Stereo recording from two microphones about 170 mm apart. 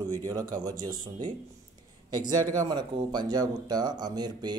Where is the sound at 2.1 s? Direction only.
25° right (ahead or behind).